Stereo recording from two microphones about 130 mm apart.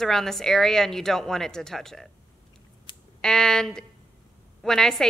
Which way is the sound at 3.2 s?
5° left (ahead or behind).